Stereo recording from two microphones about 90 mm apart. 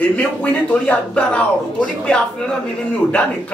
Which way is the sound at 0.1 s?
15° left (ahead or behind).